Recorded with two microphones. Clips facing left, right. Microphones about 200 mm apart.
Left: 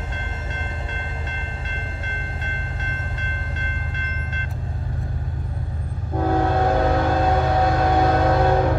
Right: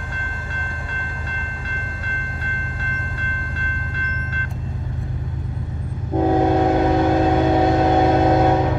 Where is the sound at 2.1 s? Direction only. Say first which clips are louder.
Right 1 dB; 25° left (ahead or behind).